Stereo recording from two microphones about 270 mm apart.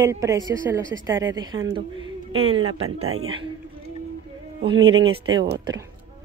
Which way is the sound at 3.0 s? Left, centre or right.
Right.